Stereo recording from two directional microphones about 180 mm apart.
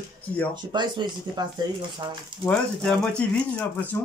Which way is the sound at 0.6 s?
25° right (ahead or behind).